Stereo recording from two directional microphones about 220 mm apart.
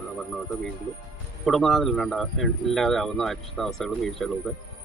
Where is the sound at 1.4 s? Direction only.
Centre (ahead or behind).